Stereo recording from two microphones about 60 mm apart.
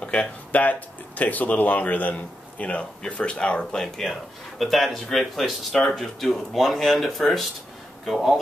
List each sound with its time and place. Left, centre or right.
0.0 s speech: centre
4.1 s speech: centre